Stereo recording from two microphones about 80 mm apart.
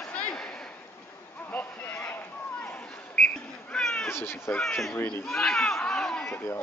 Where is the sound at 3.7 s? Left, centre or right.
Centre.